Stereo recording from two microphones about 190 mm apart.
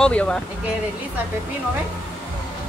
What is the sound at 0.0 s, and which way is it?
Speech, 5° left (ahead or behind).